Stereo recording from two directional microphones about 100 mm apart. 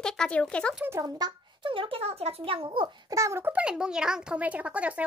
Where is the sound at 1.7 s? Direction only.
60° right (ahead or behind).